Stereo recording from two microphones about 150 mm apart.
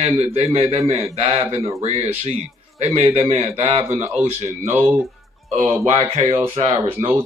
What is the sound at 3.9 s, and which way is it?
Speech, 10° right (ahead or behind).